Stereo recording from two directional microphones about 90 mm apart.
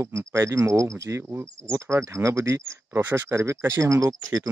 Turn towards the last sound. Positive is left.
turn(degrees=-40)  # may be behind; listen again after turning